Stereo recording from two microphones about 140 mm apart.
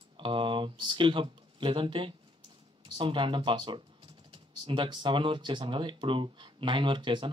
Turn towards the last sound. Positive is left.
turn(degrees=-35)  # may be behind; listen again after turning